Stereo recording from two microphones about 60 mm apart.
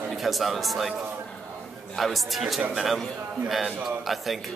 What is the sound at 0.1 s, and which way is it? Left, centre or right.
A man's voice, centre.